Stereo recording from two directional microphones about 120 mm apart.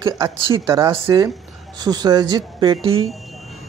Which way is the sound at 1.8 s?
35° right (ahead or behind).